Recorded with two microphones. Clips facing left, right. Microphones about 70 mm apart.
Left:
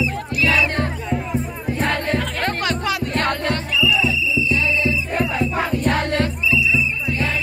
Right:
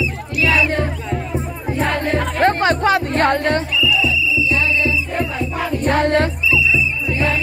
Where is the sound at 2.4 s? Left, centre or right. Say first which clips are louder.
Right 7 dB; right.